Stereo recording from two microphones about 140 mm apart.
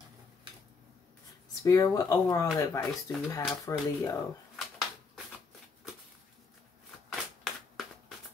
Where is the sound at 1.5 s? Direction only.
25° left (ahead or behind).